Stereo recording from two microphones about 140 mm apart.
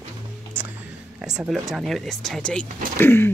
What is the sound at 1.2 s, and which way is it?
Speech, 5° right (ahead or behind).